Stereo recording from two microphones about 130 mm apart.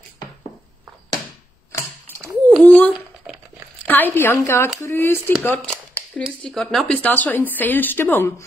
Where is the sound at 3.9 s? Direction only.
15° left (ahead or behind).